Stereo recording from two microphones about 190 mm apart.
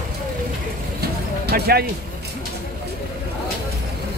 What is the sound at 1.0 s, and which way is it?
Vehicle, 55° right (ahead or behind).